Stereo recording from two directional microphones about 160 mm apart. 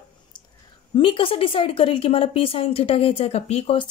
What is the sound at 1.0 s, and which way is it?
A woman's voice, 35° left (ahead or behind).